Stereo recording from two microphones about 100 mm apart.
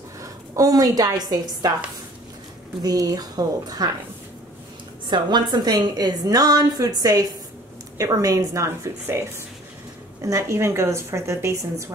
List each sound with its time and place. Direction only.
0.2 s a woman's voice: 35° right (ahead or behind)
2.8 s a woman's voice: 40° right (ahead or behind)
5.0 s a woman's voice: 50° right (ahead or behind); by 9.2 s 25° right (ahead or behind)
10.2 s a woman's voice: 30° right (ahead or behind)